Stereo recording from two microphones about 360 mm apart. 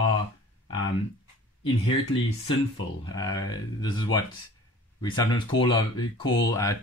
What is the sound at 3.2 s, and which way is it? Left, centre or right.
Speech, centre.